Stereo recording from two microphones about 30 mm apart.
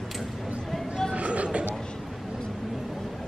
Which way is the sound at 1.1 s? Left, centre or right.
Right.